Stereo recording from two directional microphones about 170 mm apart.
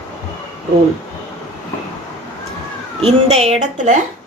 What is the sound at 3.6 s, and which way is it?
Speech, 45° right (ahead or behind).